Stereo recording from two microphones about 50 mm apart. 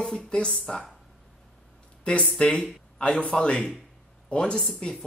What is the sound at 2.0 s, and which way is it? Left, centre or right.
A man's voice, left.